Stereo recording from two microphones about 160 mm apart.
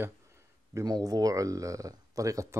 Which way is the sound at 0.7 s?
25° right (ahead or behind).